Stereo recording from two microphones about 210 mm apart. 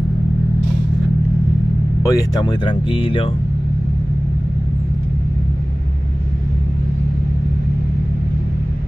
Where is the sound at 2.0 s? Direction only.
15° left (ahead or behind).